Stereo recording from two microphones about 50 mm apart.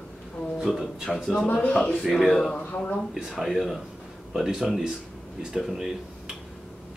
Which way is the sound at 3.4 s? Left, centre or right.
Centre.